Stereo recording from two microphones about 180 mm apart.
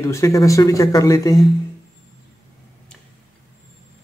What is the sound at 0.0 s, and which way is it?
Speech, 15° left (ahead or behind).